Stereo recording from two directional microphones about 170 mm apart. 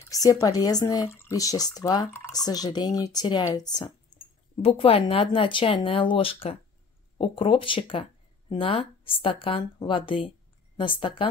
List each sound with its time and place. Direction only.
0.0 s speech: 20° left (ahead or behind)
4.6 s speech: 35° left (ahead or behind)